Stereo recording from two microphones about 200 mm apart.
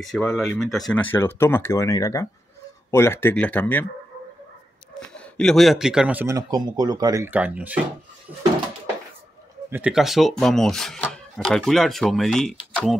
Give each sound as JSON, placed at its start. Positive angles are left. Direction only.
{"t": 0.0, "sound": "speech", "side_deg": 0}
{"t": 5.1, "sound": "speech", "side_deg": 5}
{"t": 9.7, "sound": "speech", "side_deg": -5}